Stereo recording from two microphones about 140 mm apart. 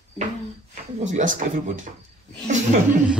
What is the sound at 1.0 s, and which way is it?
Speech, 65° right (ahead or behind).